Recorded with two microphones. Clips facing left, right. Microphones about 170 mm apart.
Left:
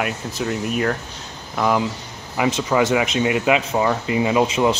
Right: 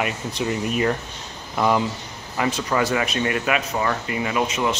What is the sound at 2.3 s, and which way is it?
Speech, 10° left (ahead or behind).